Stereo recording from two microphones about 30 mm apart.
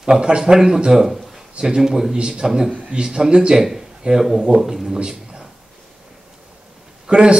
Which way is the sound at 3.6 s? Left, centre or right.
Centre.